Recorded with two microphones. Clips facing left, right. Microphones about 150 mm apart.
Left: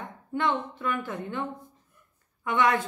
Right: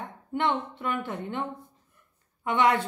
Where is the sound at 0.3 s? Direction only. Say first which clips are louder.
Even; 25° right (ahead or behind).